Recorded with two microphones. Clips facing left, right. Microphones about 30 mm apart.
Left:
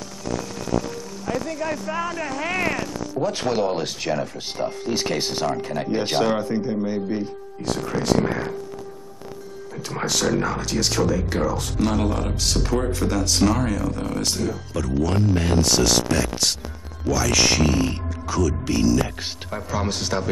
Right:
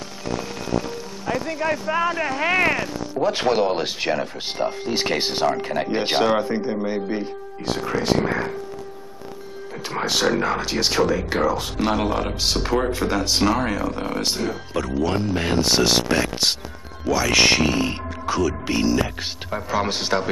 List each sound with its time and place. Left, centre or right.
1.2 s speech: right
9.8 s speech: right